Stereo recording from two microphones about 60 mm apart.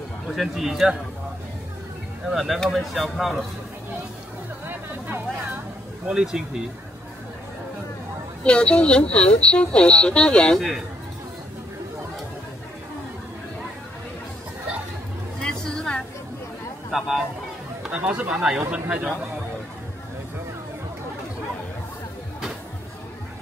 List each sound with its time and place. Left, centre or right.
0.4 s speech: centre
2.2 s speech: centre
4.6 s a sound: right
6.0 s speech: centre
8.5 s a woman's voice: centre
15.4 s a sound: centre
16.9 s speech: centre
17.9 s speech: right